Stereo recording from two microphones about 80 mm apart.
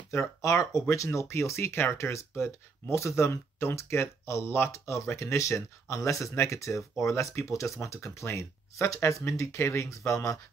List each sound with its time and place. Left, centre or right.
0.1 s speech: left